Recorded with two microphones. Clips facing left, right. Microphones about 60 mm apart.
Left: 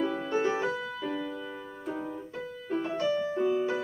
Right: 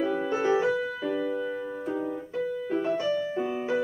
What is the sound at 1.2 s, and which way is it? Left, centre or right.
Keyboard, right.